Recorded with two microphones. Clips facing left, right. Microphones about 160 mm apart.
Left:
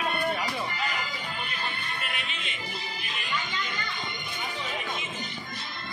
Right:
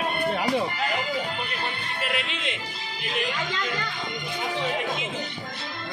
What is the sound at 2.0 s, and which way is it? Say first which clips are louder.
Music: right 7 dB; 90° right.